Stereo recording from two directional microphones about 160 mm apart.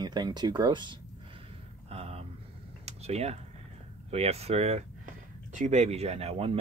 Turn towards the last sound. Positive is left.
turn(degrees=-35)  # may be behind; listen again after turning